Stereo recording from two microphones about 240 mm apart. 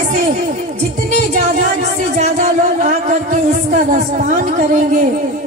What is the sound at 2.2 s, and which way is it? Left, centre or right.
Speech, right.